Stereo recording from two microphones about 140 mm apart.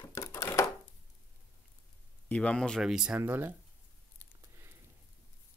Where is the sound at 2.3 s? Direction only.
10° left (ahead or behind); by 3.5 s 15° right (ahead or behind).